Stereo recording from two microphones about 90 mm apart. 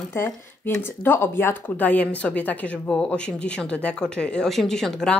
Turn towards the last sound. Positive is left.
turn(degrees=5)  # may be behind; listen again after turning